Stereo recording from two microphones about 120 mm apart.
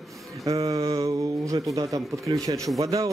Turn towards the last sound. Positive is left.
turn(degrees=-30)  # may be behind; listen again after turning